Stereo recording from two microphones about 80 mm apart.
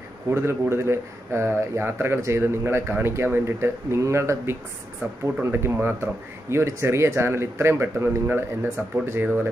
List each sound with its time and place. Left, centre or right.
0.3 s speech: right